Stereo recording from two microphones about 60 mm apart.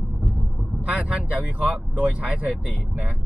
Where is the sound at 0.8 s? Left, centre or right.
Right.